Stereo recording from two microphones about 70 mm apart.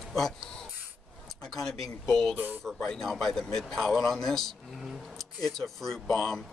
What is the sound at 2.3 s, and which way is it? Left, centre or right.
Speech, right.